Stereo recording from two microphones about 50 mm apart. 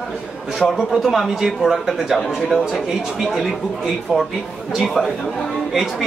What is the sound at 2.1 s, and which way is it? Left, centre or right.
Speech, centre.